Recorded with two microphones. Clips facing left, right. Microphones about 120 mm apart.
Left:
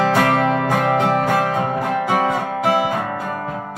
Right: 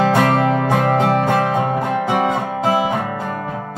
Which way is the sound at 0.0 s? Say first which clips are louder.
Right 1 dB; 25° right (ahead or behind).